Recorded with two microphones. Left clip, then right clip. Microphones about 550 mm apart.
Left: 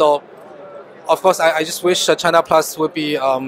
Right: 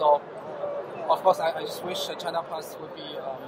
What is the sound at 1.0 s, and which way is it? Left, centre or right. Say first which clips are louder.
A man's voice: left 9 dB; left.